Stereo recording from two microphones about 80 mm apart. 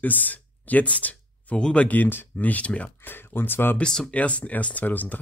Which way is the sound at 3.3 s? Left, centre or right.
Left.